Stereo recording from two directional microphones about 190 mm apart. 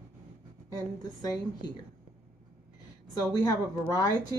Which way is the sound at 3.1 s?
20° left (ahead or behind).